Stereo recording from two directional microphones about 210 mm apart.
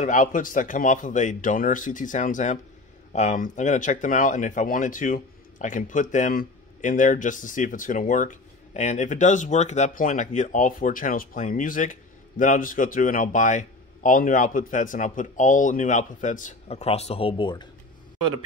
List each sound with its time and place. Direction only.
0.0 s speech: 40° left (ahead or behind); by 17.6 s 20° left (ahead or behind)